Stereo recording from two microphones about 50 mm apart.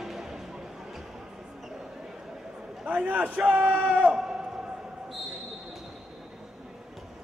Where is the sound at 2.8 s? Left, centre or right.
Right.